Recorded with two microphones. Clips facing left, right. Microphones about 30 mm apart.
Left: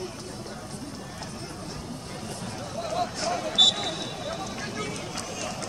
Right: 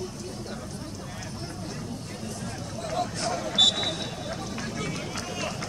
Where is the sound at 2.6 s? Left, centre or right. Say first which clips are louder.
Left 2 dB; centre.